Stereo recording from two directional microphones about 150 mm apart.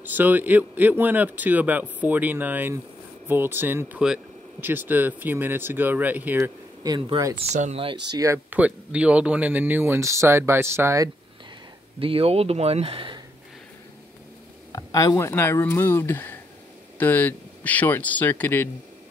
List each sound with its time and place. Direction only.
0.0 s speech: 10° right (ahead or behind)
6.8 s speech: 25° right (ahead or behind)
7.4 s speech: 50° right (ahead or behind)
7.8 s speech: 30° right (ahead or behind)
8.5 s speech: 10° right (ahead or behind)
12.0 s speech: 40° right (ahead or behind)
14.7 s speech: 25° left (ahead or behind)